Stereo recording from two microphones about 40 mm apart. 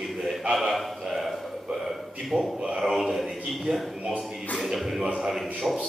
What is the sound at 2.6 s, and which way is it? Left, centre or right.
Speech, centre.